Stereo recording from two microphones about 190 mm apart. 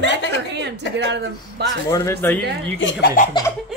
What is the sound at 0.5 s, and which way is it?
Speech, 65° right (ahead or behind).